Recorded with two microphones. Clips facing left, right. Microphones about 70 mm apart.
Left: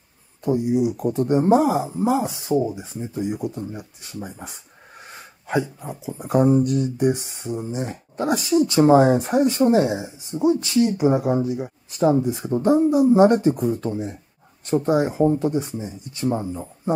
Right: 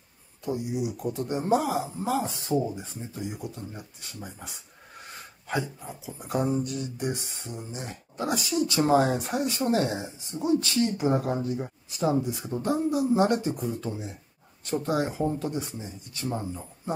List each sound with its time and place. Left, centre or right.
0.5 s speech: left
1.6 s speech: left
5.5 s speech: centre
6.0 s speech: left
8.5 s speech: left
9.7 s speech: centre
12.0 s speech: left
12.7 s speech: left
13.2 s speech: left
14.6 s speech: left